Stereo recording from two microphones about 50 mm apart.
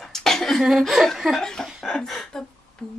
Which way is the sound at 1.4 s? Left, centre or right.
Centre.